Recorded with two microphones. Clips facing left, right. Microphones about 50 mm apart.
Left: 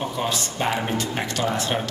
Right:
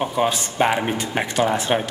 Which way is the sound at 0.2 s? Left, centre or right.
Right.